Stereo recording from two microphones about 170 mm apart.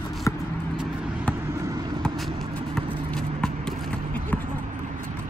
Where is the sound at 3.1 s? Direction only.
5° left (ahead or behind).